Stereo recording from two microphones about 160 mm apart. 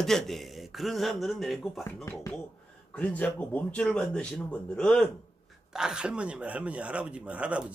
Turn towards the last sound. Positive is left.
turn(degrees=-10)  # may be behind; listen again after turning